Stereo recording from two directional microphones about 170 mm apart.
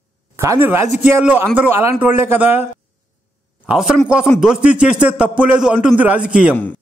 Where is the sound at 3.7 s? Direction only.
5° right (ahead or behind).